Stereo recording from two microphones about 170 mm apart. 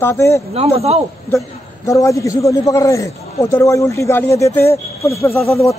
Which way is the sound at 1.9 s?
20° left (ahead or behind).